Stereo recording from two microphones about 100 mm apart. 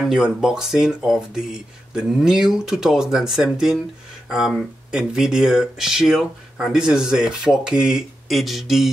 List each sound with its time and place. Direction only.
0.1 s speech: 5° right (ahead or behind)